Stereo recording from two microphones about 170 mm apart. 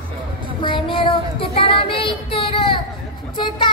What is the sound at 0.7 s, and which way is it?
Child singing, 30° left (ahead or behind).